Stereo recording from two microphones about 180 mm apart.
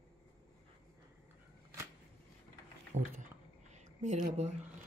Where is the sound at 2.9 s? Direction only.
40° right (ahead or behind).